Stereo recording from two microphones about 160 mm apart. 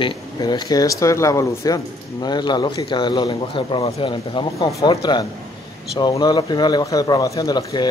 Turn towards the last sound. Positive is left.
turn(degrees=25)  # may be behind; listen again after turning